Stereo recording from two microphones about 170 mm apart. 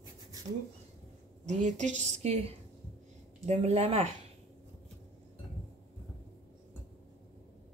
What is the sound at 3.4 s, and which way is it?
Speech, 40° right (ahead or behind).